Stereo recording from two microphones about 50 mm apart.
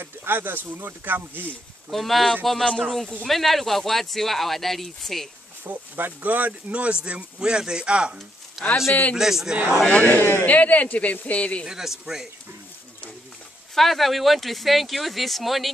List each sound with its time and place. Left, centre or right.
0.0 s speech: right
1.9 s speech: centre
5.6 s speech: right; by 8.1 s centre
8.6 s speech: centre
9.8 s speech: left
11.6 s speech: centre
13.7 s speech: centre